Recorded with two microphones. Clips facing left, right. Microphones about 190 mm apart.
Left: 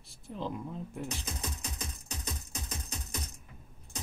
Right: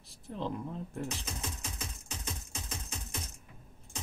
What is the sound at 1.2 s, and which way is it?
Music, 35° left (ahead or behind).